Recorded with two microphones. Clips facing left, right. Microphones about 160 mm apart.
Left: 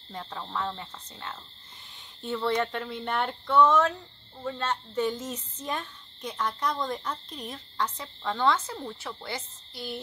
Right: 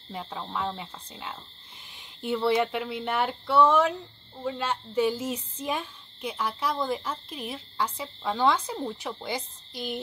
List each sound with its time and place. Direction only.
0.1 s speech: 10° right (ahead or behind)